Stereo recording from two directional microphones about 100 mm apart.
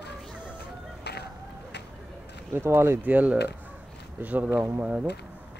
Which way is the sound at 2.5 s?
25° right (ahead or behind).